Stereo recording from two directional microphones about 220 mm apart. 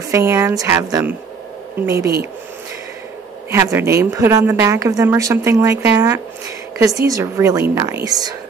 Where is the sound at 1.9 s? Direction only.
45° right (ahead or behind).